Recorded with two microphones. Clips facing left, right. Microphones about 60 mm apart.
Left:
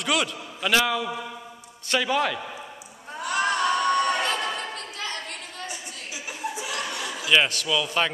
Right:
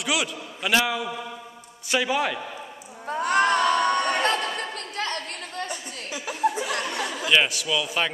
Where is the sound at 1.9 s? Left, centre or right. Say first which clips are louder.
Even; centre.